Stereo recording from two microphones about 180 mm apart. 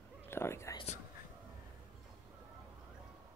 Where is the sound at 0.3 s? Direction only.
15° left (ahead or behind).